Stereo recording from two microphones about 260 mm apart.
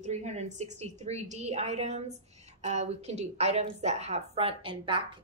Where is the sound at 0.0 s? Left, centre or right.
Right.